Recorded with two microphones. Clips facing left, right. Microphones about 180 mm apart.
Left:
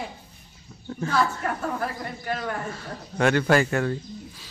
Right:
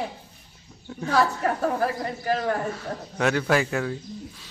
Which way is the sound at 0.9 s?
Centre (ahead or behind).